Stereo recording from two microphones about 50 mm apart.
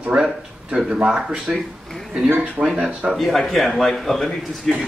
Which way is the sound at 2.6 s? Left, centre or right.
Right.